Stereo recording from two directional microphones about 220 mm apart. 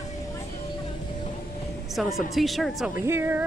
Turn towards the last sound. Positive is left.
turn(degrees=-10)  # may be behind; listen again after turning